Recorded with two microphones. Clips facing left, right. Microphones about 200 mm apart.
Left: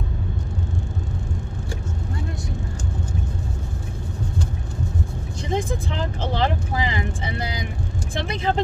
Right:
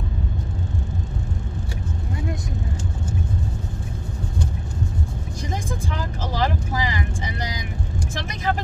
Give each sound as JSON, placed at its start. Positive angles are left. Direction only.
{"t": 5.5, "sound": "vehicle", "side_deg": 25}